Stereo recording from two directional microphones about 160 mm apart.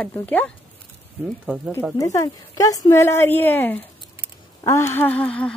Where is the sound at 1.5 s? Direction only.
10° right (ahead or behind).